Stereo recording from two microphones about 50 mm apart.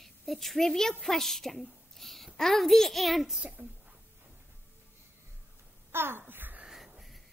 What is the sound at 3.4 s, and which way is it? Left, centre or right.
Speech, right.